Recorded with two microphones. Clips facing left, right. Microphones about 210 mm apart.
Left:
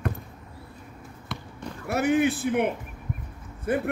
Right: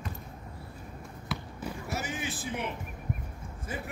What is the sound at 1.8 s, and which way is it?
Speech, 60° left (ahead or behind).